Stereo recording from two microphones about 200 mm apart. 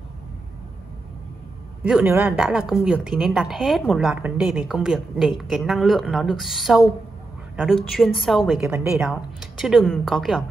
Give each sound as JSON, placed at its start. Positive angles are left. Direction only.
{"t": 1.8, "sound": "a woman's voice", "side_deg": -5}
{"t": 8.6, "sound": "speech", "side_deg": -15}
{"t": 9.0, "sound": "a woman's voice", "side_deg": 0}